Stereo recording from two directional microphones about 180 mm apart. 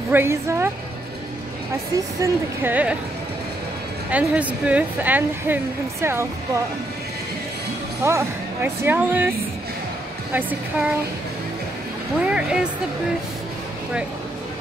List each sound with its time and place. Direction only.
0.1 s a woman's voice: 15° right (ahead or behind)
2.0 s a woman's voice: 15° right (ahead or behind)
4.1 s a woman's voice: 10° right (ahead or behind)
8.0 s a woman's voice: 15° right (ahead or behind)
10.3 s a woman's voice: 10° right (ahead or behind)
12.3 s speech: 5° right (ahead or behind)